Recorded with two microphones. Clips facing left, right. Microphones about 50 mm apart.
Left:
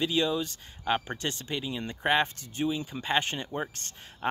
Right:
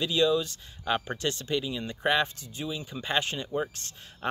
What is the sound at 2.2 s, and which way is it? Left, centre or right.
Speech, left.